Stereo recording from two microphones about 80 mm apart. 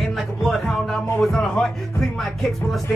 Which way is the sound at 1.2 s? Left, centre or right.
Centre.